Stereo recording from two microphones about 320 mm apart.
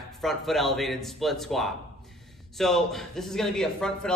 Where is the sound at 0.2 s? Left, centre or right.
Centre.